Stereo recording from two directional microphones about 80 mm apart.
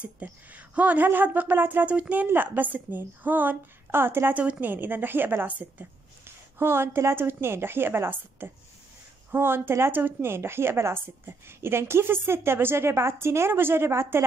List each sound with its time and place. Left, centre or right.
0.0 s a woman's voice: centre